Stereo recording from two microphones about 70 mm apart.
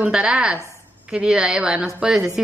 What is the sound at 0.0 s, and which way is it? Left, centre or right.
A woman's voice, centre.